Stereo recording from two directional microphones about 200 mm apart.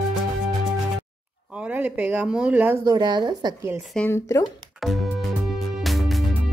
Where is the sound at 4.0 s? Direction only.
10° left (ahead or behind).